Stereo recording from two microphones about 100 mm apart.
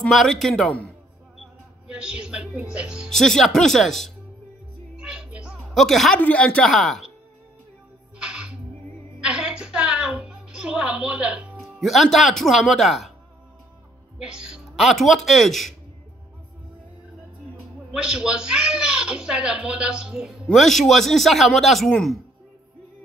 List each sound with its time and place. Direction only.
0.1 s speech: centre (ahead or behind)
1.4 s a sound: 10° right (ahead or behind)
2.7 s speech: 10° right (ahead or behind)
3.1 s speech: 5° left (ahead or behind)
4.9 s music: 10° right (ahead or behind)
5.8 s speech: centre (ahead or behind)
6.1 s speech: 15° left (ahead or behind)
8.2 s music: 10° right (ahead or behind)
11.6 s speech: centre (ahead or behind)
14.1 s speech: 10° right (ahead or behind)
18.0 s speech: 10° right (ahead or behind)